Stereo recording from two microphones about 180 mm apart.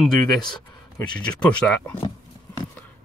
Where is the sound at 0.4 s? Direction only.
25° left (ahead or behind).